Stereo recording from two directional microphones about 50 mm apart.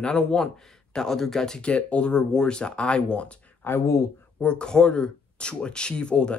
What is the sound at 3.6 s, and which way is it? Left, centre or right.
Speech, left.